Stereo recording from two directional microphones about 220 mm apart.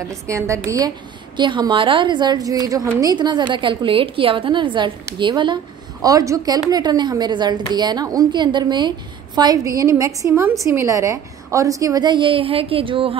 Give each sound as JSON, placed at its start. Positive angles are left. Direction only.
{"t": 0.1, "sound": "a woman's voice", "side_deg": -15}